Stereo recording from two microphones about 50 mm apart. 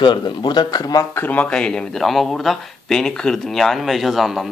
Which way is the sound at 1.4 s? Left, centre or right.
Centre.